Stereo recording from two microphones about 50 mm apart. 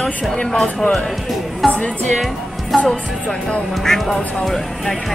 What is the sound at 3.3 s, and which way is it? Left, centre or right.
Speech, centre.